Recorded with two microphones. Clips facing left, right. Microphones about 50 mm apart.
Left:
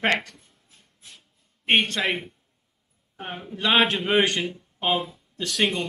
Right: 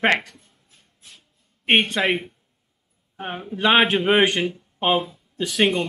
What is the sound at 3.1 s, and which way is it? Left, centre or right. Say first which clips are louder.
Speech: right 4 dB; centre.